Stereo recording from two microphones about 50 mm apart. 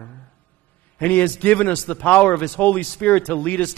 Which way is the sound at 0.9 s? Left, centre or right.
Left.